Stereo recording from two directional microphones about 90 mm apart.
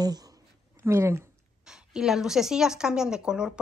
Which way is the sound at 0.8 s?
30° right (ahead or behind).